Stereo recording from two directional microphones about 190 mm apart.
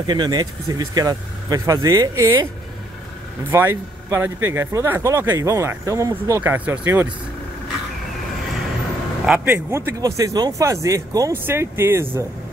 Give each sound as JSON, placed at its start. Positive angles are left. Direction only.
{"t": 0.0, "sound": "speech", "side_deg": -20}
{"t": 3.5, "sound": "speech", "side_deg": -10}
{"t": 9.2, "sound": "speech", "side_deg": -10}